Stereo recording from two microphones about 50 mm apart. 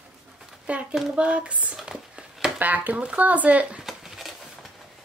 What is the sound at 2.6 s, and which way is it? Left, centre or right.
Speech, right.